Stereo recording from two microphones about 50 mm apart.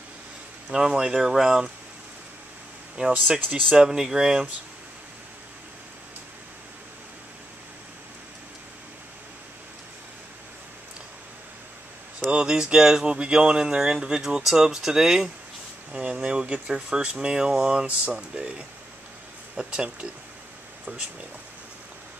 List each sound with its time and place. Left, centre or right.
0.7 s speech: centre
3.1 s speech: right
3.7 s speech: centre
12.3 s speech: centre
19.5 s speech: centre